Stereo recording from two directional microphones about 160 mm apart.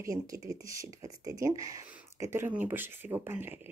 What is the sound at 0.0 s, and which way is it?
Speech, 20° right (ahead or behind).